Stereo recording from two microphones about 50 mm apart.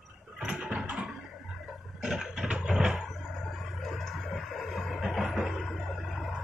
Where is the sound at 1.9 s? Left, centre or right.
Centre.